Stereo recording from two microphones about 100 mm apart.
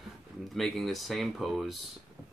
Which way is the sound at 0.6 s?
Centre (ahead or behind).